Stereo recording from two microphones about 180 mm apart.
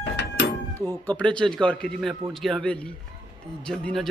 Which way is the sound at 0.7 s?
10° left (ahead or behind).